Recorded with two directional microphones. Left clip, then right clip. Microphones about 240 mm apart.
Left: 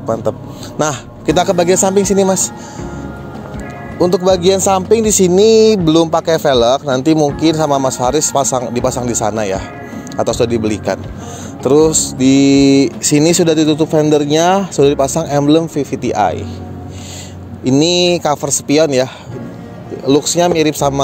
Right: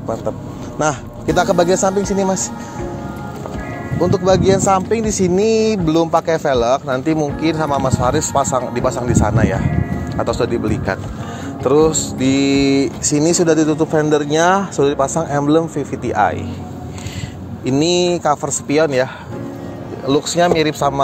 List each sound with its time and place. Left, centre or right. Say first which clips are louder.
0.0 s speech: left 5 dB; left
4.0 s speech: left 3 dB; left
17.6 s speech: left 4 dB; left
20.1 s speech: left 3 dB; left